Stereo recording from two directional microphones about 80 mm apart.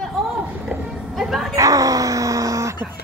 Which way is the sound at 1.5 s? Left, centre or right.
Right.